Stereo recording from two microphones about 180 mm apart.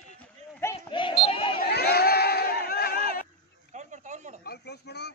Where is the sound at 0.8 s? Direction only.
30° left (ahead or behind).